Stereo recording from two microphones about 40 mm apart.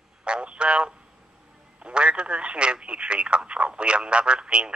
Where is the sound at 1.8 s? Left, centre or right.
Right.